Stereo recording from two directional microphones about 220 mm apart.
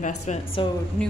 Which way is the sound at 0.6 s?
20° left (ahead or behind).